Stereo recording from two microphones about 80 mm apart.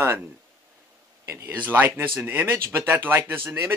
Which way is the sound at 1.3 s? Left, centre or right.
Right.